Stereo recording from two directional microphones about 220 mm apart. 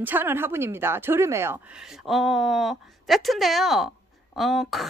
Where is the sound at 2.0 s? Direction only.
Centre (ahead or behind).